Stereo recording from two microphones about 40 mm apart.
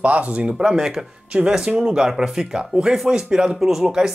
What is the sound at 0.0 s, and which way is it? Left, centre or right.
Speech, right.